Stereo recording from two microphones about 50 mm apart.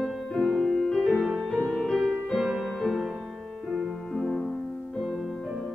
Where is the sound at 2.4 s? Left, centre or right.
Centre.